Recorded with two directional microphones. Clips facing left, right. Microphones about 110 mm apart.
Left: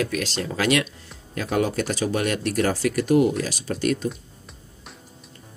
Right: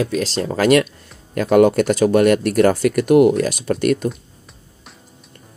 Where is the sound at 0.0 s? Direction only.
35° right (ahead or behind).